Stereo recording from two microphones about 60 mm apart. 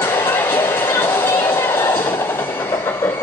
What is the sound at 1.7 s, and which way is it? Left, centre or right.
Train, left.